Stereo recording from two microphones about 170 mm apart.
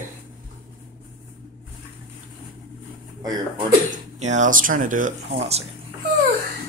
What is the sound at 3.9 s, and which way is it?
Speech, 45° right (ahead or behind).